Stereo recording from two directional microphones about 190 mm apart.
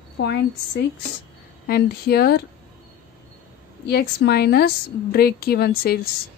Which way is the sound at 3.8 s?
60° left (ahead or behind).